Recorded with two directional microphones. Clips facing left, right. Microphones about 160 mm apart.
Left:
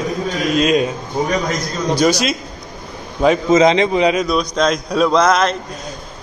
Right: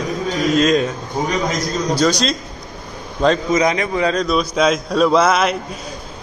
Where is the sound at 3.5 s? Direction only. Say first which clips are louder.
Left 5 dB; 25° left (ahead or behind).